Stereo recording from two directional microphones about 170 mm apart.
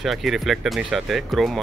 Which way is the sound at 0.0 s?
Centre (ahead or behind).